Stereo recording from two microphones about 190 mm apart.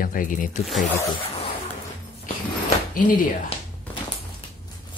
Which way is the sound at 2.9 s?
45° left (ahead or behind).